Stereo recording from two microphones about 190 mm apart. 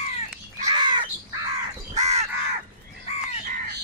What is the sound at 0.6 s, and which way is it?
Crow, 25° right (ahead or behind).